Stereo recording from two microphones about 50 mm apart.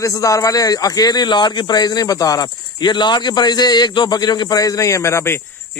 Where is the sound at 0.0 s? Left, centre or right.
Left.